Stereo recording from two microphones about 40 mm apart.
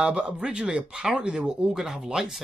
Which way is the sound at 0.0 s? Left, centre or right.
Centre.